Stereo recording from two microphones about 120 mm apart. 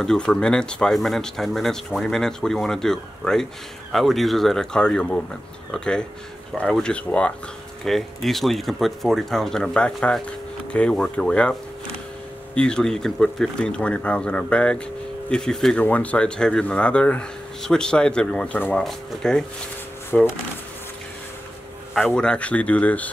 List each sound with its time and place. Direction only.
0.0 s speech: 5° left (ahead or behind)
12.5 s speech: 5° left (ahead or behind)
20.1 s speech: 20° left (ahead or behind)
21.9 s speech: 5° left (ahead or behind)